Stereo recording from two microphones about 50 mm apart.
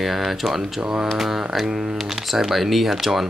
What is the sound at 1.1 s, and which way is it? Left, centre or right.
Speech, centre.